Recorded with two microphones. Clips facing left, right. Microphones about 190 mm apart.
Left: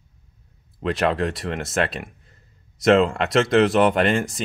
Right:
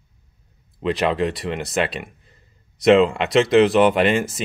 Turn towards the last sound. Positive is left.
turn(degrees=0)  # may be behind; listen again after turning